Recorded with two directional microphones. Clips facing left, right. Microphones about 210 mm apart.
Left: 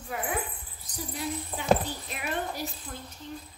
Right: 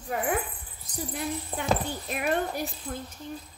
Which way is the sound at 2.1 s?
50° right (ahead or behind).